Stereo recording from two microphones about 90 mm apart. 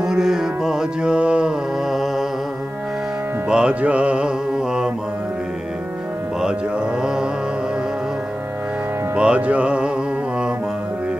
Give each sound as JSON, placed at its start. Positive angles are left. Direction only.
{"t": 0.0, "sound": "music", "side_deg": -5}
{"t": 3.4, "sound": "music", "side_deg": -10}
{"t": 9.1, "sound": "music", "side_deg": -10}